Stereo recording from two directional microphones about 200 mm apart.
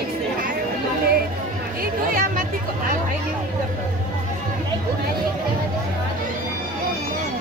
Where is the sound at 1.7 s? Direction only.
45° right (ahead or behind).